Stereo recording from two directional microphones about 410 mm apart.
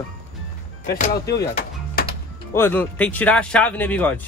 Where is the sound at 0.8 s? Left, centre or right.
Left.